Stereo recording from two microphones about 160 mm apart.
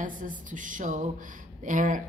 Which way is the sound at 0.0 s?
55° right (ahead or behind).